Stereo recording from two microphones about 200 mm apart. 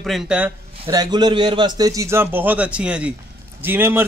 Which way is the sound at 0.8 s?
20° right (ahead or behind).